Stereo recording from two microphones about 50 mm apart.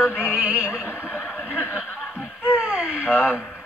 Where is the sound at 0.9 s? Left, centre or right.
Right.